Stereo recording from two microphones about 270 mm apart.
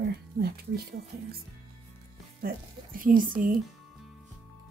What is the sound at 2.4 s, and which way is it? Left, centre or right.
Speech, right.